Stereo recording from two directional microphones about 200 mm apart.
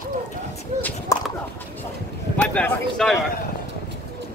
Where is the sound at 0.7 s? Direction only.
35° right (ahead or behind).